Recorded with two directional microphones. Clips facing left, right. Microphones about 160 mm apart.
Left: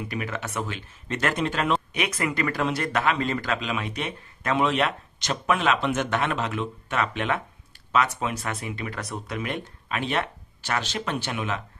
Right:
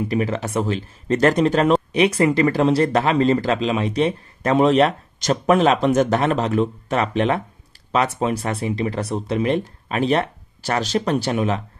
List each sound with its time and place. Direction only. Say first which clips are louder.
0.1 s speech: right 9 dB; 30° right (ahead or behind)